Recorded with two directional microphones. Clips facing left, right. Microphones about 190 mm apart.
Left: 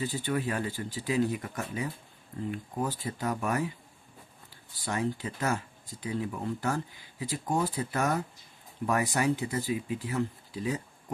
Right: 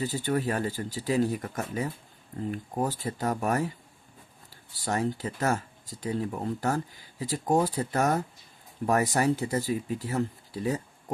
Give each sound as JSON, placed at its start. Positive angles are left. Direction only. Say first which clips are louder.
{"t": 0.0, "sound": "speech", "louder": "right 3 dB", "side_deg": -40}
{"t": 4.8, "sound": "speech", "louder": "right 3 dB", "side_deg": -40}